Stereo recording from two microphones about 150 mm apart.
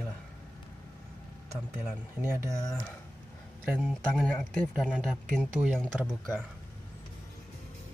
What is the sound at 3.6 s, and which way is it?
Speech, 10° right (ahead or behind).